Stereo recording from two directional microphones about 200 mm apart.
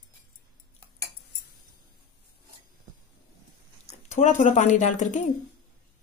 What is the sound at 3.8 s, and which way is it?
Speech, 35° left (ahead or behind).